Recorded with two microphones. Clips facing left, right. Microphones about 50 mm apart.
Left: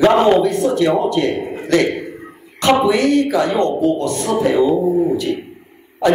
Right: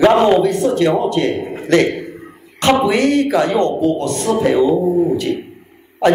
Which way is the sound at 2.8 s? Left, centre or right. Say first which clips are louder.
Even; right.